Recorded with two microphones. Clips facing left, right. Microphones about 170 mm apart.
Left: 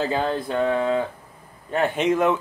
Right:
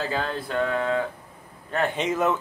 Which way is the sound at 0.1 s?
20° left (ahead or behind).